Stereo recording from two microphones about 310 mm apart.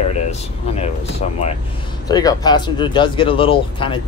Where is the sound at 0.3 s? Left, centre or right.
Left.